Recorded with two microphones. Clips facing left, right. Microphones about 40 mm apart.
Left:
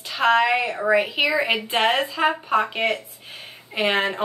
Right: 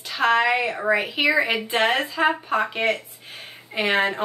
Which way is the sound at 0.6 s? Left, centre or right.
Centre.